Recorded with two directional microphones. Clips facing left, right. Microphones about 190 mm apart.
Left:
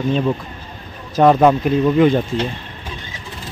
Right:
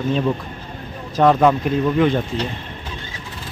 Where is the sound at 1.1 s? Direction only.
15° left (ahead or behind).